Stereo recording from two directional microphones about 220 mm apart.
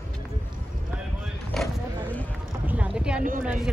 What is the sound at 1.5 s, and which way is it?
Vehicle, 5° left (ahead or behind).